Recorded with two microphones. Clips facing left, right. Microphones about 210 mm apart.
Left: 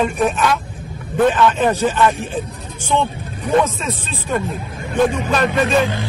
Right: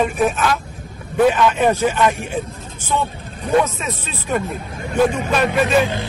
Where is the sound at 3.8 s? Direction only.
10° right (ahead or behind).